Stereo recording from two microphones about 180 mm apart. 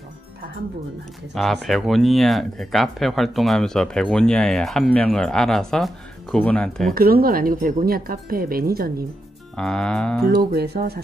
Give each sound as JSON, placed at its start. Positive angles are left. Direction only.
{"t": 1.3, "sound": "speech", "side_deg": 0}
{"t": 6.9, "sound": "speech", "side_deg": -55}
{"t": 9.6, "sound": "speech", "side_deg": 5}
{"t": 10.5, "sound": "speech", "side_deg": -60}